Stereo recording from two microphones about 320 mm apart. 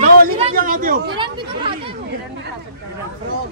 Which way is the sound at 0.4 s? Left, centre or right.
Right.